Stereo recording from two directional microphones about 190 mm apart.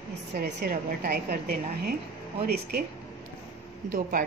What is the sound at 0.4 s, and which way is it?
A woman's voice, 50° right (ahead or behind).